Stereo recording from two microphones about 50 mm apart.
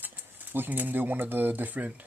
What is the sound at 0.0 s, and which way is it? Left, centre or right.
Speech, right.